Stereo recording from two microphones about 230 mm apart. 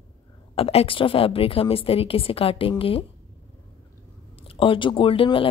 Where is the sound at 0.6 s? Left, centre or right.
Left.